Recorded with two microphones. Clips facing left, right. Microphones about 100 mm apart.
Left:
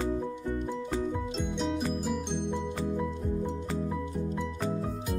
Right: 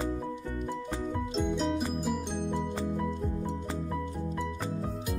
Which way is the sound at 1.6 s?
Centre (ahead or behind).